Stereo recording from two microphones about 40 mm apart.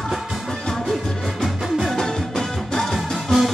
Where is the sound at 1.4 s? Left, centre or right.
Centre.